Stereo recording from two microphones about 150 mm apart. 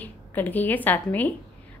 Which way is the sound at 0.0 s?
10° left (ahead or behind).